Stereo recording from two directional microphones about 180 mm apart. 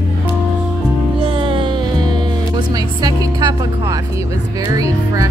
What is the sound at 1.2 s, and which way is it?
Speech, 30° right (ahead or behind).